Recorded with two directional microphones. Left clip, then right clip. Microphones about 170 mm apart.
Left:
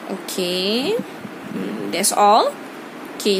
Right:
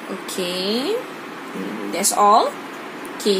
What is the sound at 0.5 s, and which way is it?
Speech, 10° left (ahead or behind).